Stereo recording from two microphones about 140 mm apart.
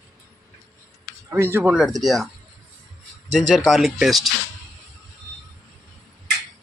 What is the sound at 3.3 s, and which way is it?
Speech, 5° left (ahead or behind).